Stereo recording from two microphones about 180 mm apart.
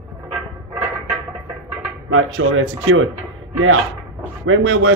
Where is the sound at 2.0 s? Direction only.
90° right.